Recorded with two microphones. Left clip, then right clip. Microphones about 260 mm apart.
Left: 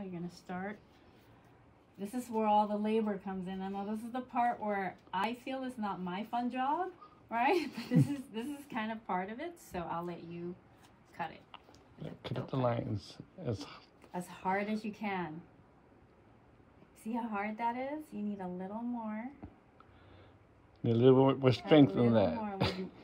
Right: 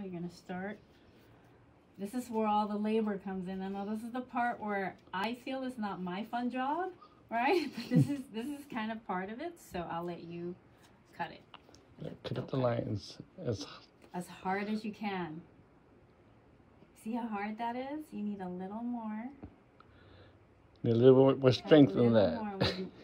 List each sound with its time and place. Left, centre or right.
0.0 s a sound: centre
0.5 s a woman's voice: centre
2.3 s a woman's voice: centre
12.4 s speech: left
14.1 s a woman's voice: centre
17.1 s a woman's voice: centre
20.8 s speech: left